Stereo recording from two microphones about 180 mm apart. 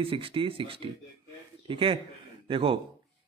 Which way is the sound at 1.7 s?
30° right (ahead or behind).